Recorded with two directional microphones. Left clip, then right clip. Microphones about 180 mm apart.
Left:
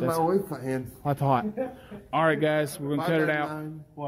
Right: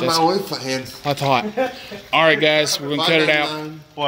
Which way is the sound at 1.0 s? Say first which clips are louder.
Right 7 dB; 5° left (ahead or behind).